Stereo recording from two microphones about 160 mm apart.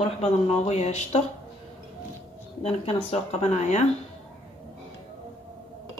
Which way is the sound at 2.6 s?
40° left (ahead or behind).